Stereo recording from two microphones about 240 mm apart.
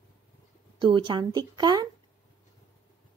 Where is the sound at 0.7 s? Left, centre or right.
Centre.